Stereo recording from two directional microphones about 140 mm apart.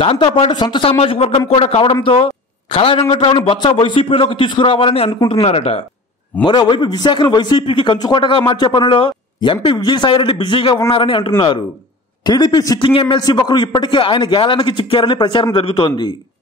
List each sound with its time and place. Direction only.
0.0 s a man's voice: 40° left (ahead or behind)
6.4 s a man's voice: 30° left (ahead or behind)